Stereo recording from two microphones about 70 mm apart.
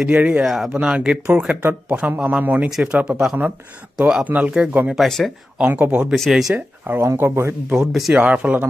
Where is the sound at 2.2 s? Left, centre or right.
Centre.